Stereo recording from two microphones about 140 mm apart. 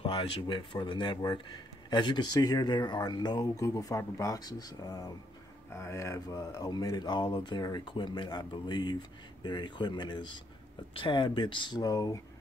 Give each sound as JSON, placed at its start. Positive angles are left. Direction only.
{"t": 0.0, "sound": "speech", "side_deg": 35}